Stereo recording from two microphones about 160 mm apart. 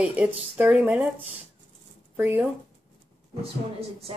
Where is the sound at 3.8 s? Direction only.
40° right (ahead or behind).